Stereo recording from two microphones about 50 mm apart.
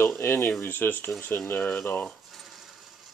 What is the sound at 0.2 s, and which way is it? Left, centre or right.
Speech, left.